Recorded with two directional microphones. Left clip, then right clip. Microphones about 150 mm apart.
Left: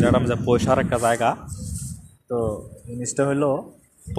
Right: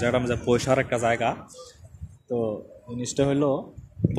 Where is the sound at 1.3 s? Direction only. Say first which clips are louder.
Left 5 dB; 30° left (ahead or behind).